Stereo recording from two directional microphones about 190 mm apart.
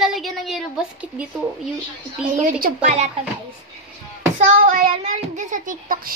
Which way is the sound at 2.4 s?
50° right (ahead or behind).